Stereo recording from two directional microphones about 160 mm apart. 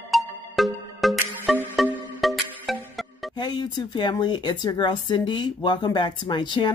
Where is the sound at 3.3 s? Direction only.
25° left (ahead or behind).